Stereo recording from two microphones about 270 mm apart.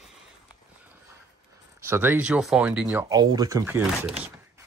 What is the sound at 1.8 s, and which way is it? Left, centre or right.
Speech, centre.